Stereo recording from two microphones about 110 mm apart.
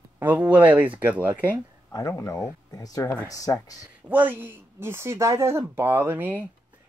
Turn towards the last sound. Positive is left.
turn(degrees=-15)  # may be behind; listen again after turning